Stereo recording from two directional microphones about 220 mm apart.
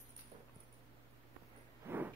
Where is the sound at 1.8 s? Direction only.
10° right (ahead or behind).